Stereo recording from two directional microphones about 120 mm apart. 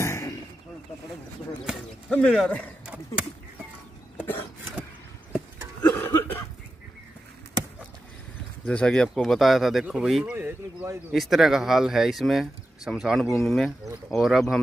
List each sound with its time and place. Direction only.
0.0 s a sound: 25° left (ahead or behind)
2.0 s speech: 10° left (ahead or behind)
4.2 s vehicle: 15° left (ahead or behind)
5.8 s a sound: 15° left (ahead or behind)
8.6 s speech: 10° left (ahead or behind)
10.3 s speech: 15° right (ahead or behind)
11.1 s speech: centre (ahead or behind)